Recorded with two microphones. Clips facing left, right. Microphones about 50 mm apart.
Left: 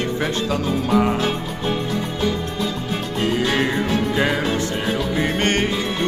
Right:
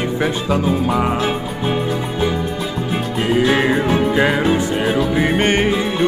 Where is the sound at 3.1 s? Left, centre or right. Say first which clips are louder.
Right 4 dB; centre.